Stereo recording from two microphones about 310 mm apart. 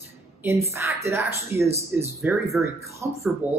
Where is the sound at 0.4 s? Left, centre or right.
Centre.